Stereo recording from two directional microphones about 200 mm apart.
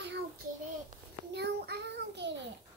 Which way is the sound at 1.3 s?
55° right (ahead or behind).